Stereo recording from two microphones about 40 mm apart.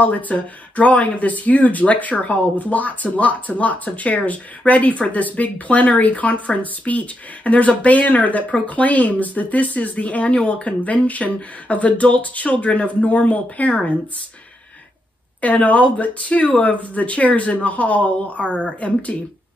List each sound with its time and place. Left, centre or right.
0.0 s speech: left
15.4 s speech: left